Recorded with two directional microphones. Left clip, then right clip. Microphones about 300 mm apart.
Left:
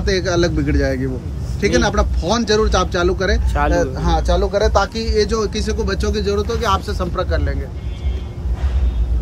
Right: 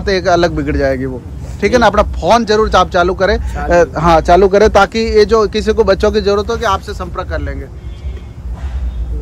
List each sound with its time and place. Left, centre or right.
0.0 s speech: centre